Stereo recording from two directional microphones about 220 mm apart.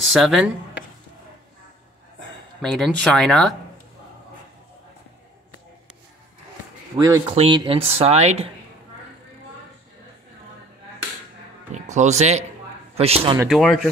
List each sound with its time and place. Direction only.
0.1 s speech: centre (ahead or behind)
2.6 s speech: centre (ahead or behind)
7.0 s speech: 15° right (ahead or behind)
11.7 s a man's voice: 30° right (ahead or behind)
13.5 s speech: centre (ahead or behind)